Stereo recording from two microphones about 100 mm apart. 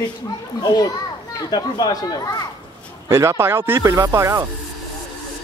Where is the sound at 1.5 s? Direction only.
40° left (ahead or behind).